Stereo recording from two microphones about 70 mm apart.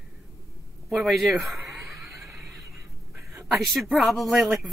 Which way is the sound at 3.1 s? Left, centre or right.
Right.